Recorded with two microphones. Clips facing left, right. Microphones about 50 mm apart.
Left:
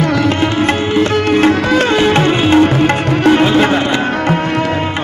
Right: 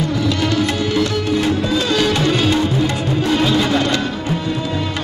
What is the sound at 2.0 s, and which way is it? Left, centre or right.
Music, left.